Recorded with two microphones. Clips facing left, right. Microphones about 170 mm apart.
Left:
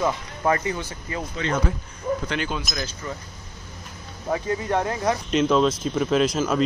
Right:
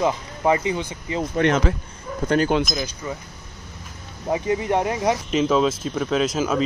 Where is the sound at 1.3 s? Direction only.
80° right.